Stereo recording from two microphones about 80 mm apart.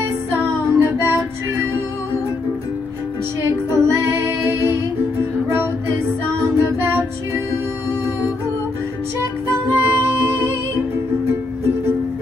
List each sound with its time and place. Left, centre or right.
0.4 s music: right
3.4 s music: right
9.2 s music: right